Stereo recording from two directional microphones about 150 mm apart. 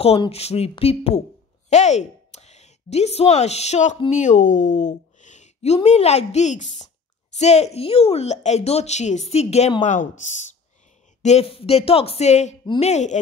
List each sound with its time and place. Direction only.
0.3 s a woman's voice: 45° left (ahead or behind)
9.8 s speech: 55° left (ahead or behind)
11.2 s a woman's voice: 45° left (ahead or behind)